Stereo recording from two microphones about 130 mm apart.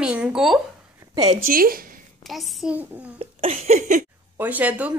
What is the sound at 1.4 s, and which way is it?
Speech, 90° right.